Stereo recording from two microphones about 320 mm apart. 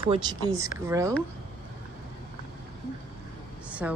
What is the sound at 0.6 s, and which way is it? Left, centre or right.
Speech, centre.